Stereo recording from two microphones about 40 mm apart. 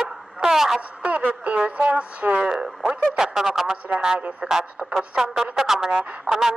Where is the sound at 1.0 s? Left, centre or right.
Right.